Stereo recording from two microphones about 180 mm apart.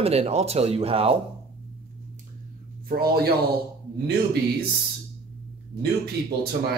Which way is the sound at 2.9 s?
55° right (ahead or behind).